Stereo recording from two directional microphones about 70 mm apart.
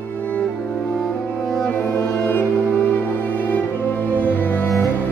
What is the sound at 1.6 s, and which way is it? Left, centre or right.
Music, left.